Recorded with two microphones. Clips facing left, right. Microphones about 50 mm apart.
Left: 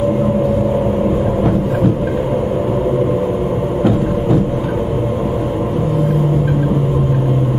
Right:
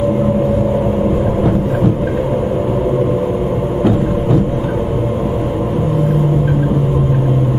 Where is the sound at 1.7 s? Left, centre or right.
Right.